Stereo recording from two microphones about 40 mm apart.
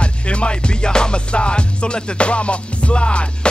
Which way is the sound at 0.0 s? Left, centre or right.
Left.